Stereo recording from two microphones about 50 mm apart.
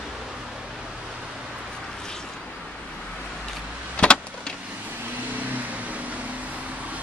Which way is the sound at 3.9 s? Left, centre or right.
Left.